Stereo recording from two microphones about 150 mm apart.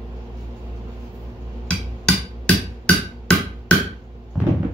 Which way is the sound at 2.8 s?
5° left (ahead or behind).